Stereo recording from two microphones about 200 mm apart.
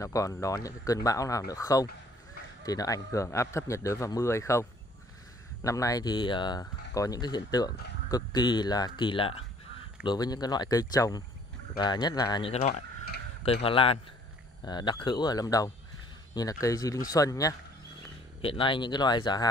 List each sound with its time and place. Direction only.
0.0 s a man's voice: 15° left (ahead or behind)